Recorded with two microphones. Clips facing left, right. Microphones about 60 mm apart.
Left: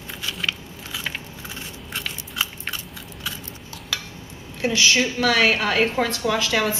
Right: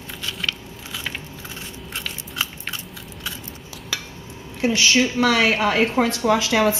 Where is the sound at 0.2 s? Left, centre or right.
Centre.